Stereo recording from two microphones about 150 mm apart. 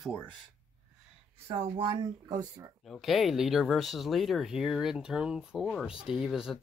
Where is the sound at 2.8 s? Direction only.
Centre (ahead or behind).